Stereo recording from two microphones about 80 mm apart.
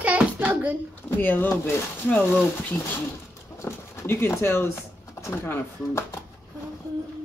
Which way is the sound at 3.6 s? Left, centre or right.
Left.